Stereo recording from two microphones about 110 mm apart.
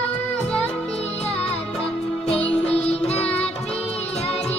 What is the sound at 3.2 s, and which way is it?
Music, 10° left (ahead or behind).